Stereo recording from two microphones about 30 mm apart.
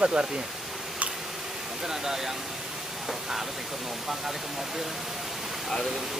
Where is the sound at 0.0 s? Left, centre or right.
Right.